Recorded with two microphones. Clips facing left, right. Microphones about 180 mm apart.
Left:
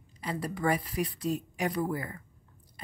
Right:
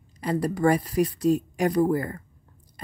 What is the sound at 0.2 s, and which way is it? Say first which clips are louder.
A woman's voice: right 9 dB; 40° right (ahead or behind).